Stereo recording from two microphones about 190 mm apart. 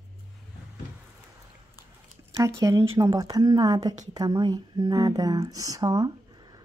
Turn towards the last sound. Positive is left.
turn(degrees=-20)  # may be behind; listen again after turning